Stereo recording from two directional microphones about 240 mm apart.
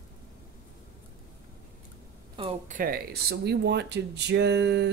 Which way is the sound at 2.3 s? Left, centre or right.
Right.